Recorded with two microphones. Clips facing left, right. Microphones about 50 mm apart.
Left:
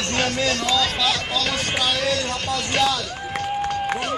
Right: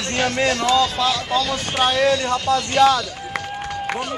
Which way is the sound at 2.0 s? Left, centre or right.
Right.